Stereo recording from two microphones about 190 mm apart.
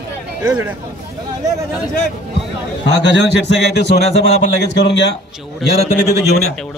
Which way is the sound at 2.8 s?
65° left (ahead or behind).